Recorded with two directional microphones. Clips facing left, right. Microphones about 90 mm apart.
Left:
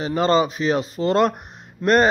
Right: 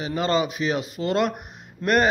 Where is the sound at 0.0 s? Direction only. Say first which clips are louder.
Left 5 dB; 40° left (ahead or behind).